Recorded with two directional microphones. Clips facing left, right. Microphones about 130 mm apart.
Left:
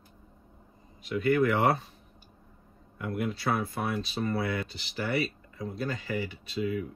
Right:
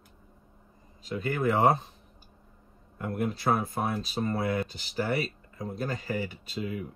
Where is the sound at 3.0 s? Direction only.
40° right (ahead or behind).